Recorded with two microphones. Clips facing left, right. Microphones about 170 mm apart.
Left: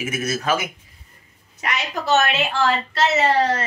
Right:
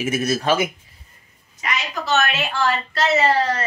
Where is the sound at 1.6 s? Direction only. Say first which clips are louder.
Left 1 dB; 60° left (ahead or behind).